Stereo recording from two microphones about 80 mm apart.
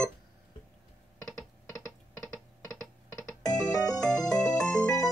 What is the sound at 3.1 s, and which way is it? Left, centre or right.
Music, left.